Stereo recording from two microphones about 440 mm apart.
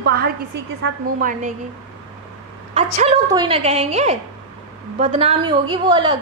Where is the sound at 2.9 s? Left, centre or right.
Centre.